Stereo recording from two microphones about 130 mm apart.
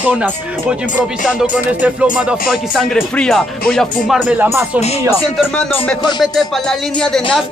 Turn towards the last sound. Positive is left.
turn(degrees=5)  # may be behind; listen again after turning